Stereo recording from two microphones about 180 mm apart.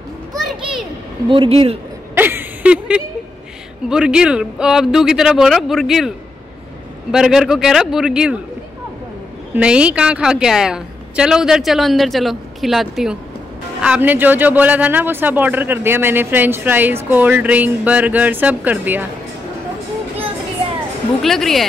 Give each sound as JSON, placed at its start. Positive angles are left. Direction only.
{"t": 0.5, "sound": "a sound", "side_deg": 0}
{"t": 1.3, "sound": "speech", "side_deg": -30}
{"t": 2.1, "sound": "a sound", "side_deg": -10}
{"t": 3.9, "sound": "a woman's voice", "side_deg": -5}
{"t": 9.5, "sound": "a woman's voice", "side_deg": -5}
{"t": 21.2, "sound": "a woman's voice", "side_deg": 0}